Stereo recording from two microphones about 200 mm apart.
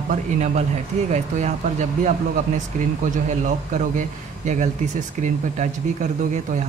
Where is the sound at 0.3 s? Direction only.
35° right (ahead or behind).